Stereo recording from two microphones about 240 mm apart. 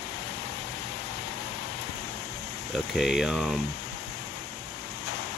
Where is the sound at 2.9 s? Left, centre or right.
Centre.